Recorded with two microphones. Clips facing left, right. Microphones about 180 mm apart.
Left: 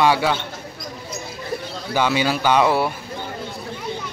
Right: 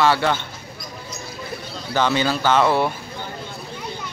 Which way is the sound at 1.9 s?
10° left (ahead or behind).